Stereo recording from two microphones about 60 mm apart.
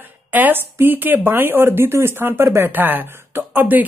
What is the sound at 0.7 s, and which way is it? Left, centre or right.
Speech, right.